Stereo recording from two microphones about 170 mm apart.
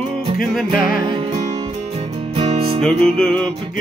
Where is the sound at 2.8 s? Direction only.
Centre (ahead or behind).